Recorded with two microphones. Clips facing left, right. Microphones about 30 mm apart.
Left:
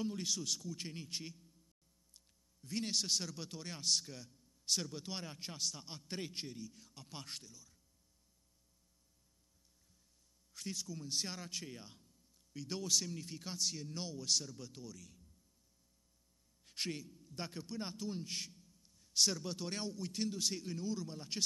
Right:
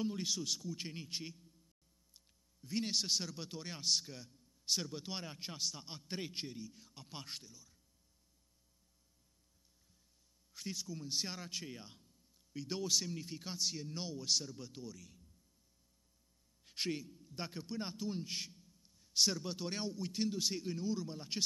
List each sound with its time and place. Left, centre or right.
0.0 s a man's voice: centre
10.5 s a man's voice: centre
16.6 s a man's voice: centre